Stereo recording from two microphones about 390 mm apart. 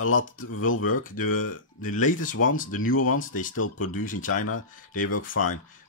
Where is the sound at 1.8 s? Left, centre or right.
Centre.